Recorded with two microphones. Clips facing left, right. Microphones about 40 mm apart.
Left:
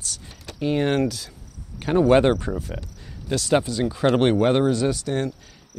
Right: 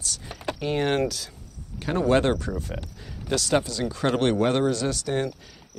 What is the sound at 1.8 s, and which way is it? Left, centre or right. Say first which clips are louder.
Speech: left 5 dB; left.